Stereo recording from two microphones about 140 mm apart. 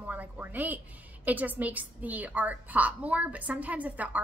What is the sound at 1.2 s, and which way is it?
A woman's voice, 10° right (ahead or behind).